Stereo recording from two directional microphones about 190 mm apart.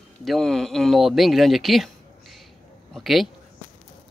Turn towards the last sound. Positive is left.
turn(degrees=0)  # may be behind; listen again after turning